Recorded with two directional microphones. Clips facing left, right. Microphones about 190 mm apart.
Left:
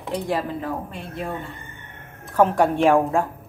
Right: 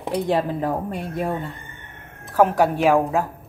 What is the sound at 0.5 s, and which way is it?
Speech, 45° right (ahead or behind).